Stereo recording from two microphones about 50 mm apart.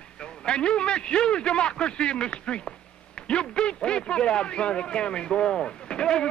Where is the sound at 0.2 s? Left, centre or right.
Centre.